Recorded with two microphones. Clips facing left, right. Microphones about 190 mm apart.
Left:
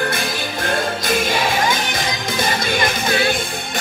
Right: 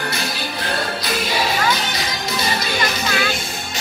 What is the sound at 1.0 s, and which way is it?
Music, 50° left (ahead or behind).